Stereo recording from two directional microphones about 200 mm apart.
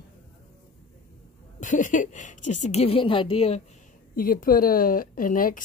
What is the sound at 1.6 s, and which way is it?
A woman's voice, 40° left (ahead or behind).